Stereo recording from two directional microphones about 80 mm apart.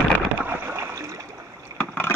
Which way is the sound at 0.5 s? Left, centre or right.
Right.